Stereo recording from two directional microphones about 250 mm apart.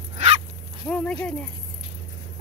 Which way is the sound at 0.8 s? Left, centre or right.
Centre.